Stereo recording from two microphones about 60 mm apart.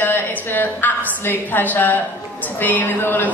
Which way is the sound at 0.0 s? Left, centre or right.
Left.